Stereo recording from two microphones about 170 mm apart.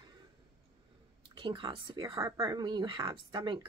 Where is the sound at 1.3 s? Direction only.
30° right (ahead or behind).